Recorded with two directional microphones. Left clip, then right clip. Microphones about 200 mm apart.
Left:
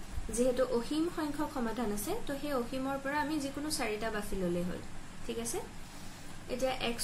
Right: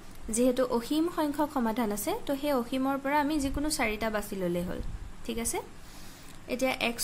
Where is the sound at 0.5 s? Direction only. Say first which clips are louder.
Right 3 dB; 60° right (ahead or behind).